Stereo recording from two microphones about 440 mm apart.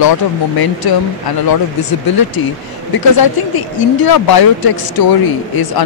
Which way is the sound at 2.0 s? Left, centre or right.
Left.